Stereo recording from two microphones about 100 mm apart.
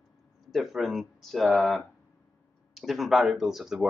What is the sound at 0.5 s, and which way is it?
Speech, centre (ahead or behind).